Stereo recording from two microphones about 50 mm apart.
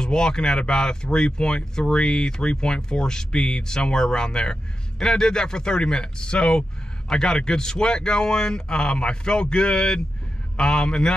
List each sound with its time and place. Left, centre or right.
0.0 s speech: centre